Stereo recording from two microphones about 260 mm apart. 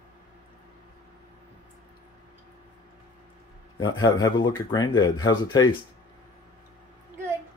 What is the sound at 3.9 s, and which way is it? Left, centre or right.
Speech, centre.